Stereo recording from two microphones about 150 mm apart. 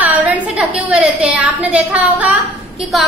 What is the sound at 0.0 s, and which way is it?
A woman's voice, 10° right (ahead or behind).